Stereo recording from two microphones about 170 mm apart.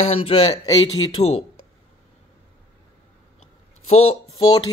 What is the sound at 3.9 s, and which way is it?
Speech, 40° left (ahead or behind).